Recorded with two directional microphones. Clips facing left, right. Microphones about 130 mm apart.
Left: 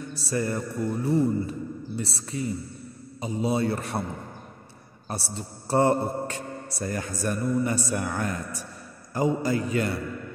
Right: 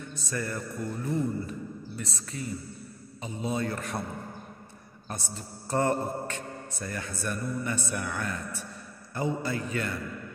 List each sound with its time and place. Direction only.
0.0 s speech: 35° left (ahead or behind)
5.0 s a man's voice: 35° left (ahead or behind)